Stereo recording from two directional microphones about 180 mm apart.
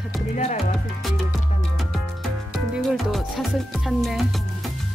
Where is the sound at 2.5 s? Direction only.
Centre (ahead or behind).